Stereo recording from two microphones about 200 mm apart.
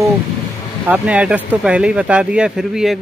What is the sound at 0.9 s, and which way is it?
Speech, 5° right (ahead or behind).